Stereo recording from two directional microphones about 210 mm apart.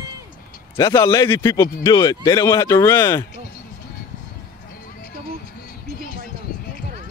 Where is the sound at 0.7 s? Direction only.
15° left (ahead or behind).